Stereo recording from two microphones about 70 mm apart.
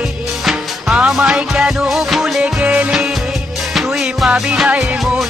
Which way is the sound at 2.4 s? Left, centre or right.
Centre.